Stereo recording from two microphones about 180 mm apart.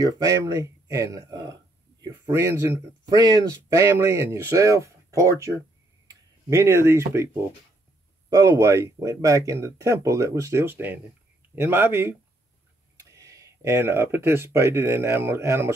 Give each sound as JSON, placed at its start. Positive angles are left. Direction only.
{"t": 0.0, "sound": "speech", "side_deg": -20}
{"t": 8.4, "sound": "speech", "side_deg": -20}